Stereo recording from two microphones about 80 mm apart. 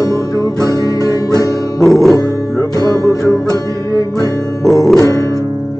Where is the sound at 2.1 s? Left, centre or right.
Left.